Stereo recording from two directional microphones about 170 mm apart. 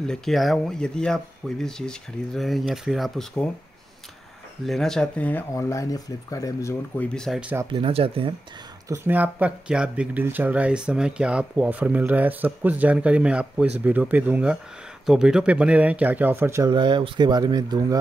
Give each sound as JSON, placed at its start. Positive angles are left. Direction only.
{"t": 0.0, "sound": "speech", "side_deg": 5}
{"t": 4.6, "sound": "speech", "side_deg": 0}
{"t": 5.5, "sound": "speech", "side_deg": 20}
{"t": 7.7, "sound": "speech", "side_deg": -35}
{"t": 8.8, "sound": "speech", "side_deg": -15}
{"t": 16.7, "sound": "speech", "side_deg": -30}